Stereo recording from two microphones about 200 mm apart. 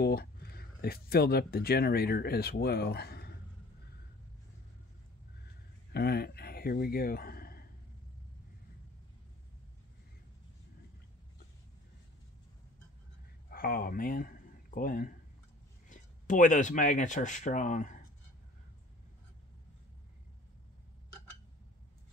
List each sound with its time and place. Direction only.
0.0 s speech: 50° left (ahead or behind)
5.9 s speech: 55° left (ahead or behind)
13.5 s speech: 45° left (ahead or behind)